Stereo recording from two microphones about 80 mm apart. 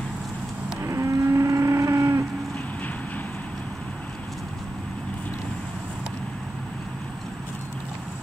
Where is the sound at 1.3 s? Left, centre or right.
Right.